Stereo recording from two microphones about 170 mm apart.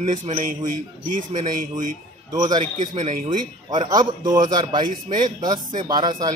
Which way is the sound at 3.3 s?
25° right (ahead or behind).